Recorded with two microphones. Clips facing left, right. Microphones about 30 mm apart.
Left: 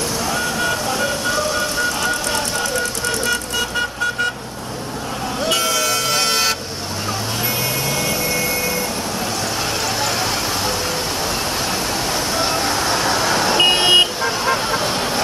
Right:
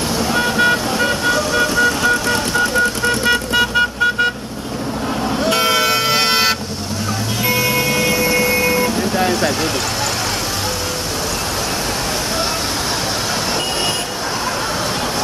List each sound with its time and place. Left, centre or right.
0.3 s vehicle: right
0.9 s vehicle: right
3.3 s vehicle: right
5.5 s vehicle: right
8.0 s vehicle: right
13.6 s vehicle: left